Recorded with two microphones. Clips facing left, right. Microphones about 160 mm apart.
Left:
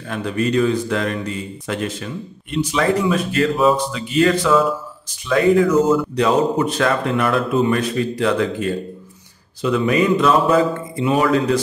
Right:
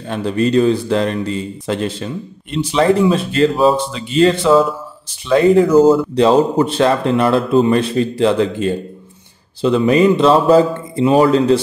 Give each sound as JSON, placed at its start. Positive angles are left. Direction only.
{"t": 0.1, "sound": "speech", "side_deg": -30}